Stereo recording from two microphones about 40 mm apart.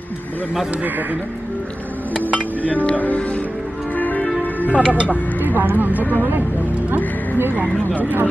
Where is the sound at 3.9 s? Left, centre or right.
Left.